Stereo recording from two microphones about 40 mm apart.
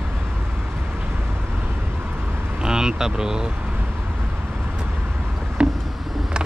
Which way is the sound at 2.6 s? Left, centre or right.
Centre.